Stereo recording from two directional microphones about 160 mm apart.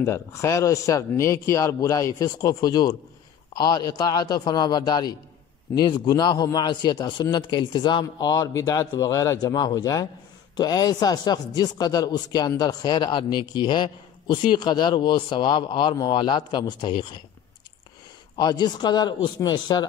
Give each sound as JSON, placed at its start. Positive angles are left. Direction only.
{"t": 0.0, "sound": "a man's voice", "side_deg": 20}
{"t": 18.4, "sound": "a man's voice", "side_deg": 25}